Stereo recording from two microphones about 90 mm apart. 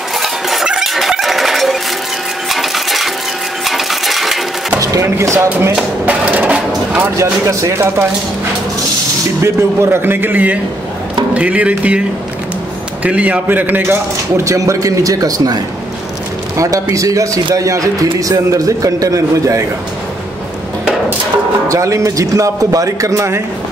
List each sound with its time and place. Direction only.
0.2 s a sound: centre (ahead or behind)
2.5 s coin: centre (ahead or behind)
4.7 s speech: 40° right (ahead or behind)
5.5 s speech: 20° right (ahead or behind)
7.0 s speech: 35° right (ahead or behind)
9.4 s speech: 30° right (ahead or behind); by 12.0 s 15° right (ahead or behind)
13.0 s speech: 15° right (ahead or behind)
14.4 s speech: 35° right (ahead or behind)
16.5 s a man's voice: 40° right (ahead or behind)
21.6 s speech: 35° right (ahead or behind)